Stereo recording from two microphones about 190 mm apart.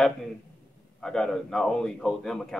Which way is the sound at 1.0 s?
5° left (ahead or behind).